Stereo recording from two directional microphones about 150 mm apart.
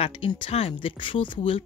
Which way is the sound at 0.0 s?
35° left (ahead or behind).